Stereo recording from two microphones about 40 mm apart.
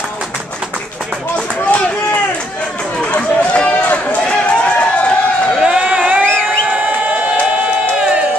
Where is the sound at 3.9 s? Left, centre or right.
Left.